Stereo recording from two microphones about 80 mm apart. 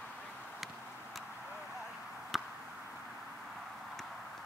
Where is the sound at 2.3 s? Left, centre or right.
Centre.